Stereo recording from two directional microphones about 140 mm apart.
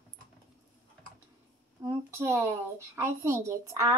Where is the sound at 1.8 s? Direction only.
20° right (ahead or behind).